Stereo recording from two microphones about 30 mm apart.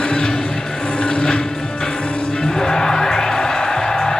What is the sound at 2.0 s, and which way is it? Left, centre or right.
Music, left.